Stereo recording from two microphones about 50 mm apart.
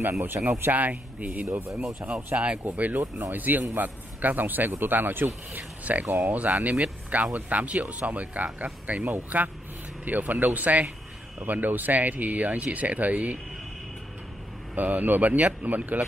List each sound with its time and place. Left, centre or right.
0.2 s speech: right
0.5 s speech: right
0.7 s speech: right
2.3 s speech: right
2.6 s speech: right
14.8 s speech: right